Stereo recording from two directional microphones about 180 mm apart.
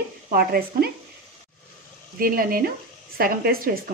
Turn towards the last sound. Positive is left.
turn(degrees=-55)  # may be behind; listen again after turning